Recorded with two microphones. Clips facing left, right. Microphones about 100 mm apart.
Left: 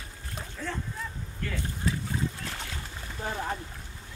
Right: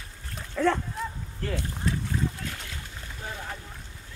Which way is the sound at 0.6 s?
90° right.